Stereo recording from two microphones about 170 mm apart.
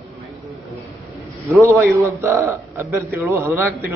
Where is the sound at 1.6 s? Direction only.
15° right (ahead or behind).